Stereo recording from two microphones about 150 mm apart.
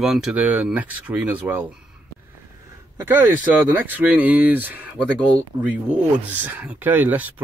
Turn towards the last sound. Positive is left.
turn(degrees=-10)  # may be behind; listen again after turning